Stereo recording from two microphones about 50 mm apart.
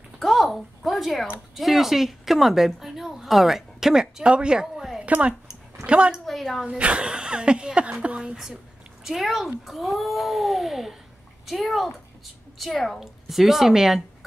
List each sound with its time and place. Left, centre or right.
0.2 s a sound: centre
1.5 s speech: centre
5.0 s speech: right
6.2 s a woman's voice: centre
6.8 s speech: right
8.2 s a sound: centre
9.0 s a child's voice: centre